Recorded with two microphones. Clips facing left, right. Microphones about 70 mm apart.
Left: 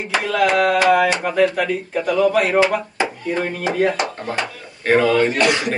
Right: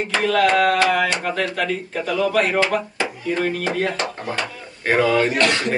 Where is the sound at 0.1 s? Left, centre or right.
Centre.